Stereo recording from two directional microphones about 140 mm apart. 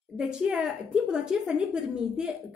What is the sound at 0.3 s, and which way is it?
A woman's voice, 5° right (ahead or behind).